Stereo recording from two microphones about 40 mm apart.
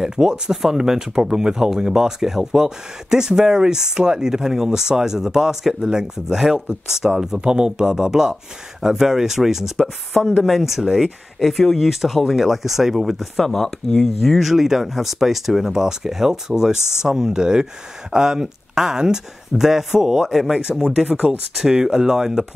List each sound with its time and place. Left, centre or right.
0.0 s speech: centre
7.3 s speech: right; by 13.3 s centre
13.4 s speech: centre
14.0 s speech: centre